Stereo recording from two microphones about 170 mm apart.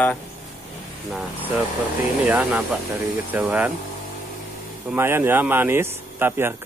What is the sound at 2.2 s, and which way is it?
Speech, 10° right (ahead or behind).